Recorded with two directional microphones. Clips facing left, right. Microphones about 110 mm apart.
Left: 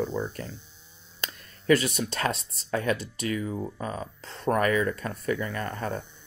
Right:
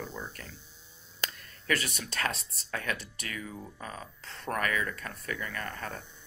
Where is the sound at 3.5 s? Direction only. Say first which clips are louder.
Left 10 dB; 40° left (ahead or behind).